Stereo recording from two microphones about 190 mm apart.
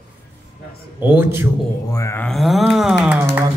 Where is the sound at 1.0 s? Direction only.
10° right (ahead or behind).